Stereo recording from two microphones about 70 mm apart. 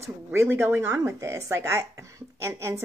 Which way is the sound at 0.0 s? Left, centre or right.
Right.